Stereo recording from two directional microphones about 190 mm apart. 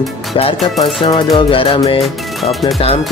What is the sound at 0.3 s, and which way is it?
Speech, 25° left (ahead or behind).